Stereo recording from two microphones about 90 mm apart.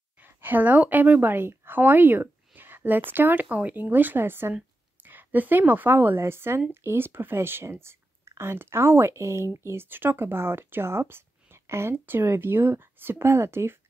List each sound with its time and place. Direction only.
0.2 s a woman's voice: 20° right (ahead or behind)